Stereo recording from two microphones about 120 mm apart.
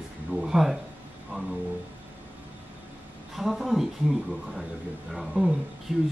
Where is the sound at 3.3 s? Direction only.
Centre (ahead or behind).